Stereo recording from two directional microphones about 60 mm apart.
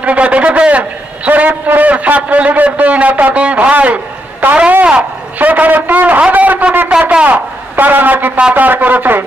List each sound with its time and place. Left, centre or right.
0.0 s a man's voice: right
6.9 s a sound: centre
8.5 s a man's voice: right